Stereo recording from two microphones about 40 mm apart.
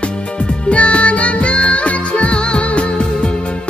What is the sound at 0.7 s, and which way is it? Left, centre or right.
Music, left.